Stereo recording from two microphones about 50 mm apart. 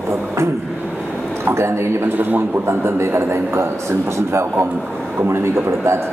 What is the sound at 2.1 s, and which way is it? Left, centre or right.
Speech, right.